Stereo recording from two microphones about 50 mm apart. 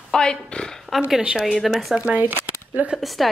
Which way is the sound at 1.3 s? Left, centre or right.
Centre.